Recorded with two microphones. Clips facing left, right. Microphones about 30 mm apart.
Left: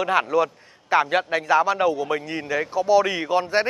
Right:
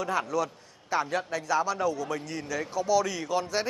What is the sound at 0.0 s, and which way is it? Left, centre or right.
A man's voice, left.